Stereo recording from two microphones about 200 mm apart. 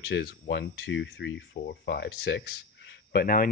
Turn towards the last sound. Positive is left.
turn(degrees=45)  # may be behind; listen again after turning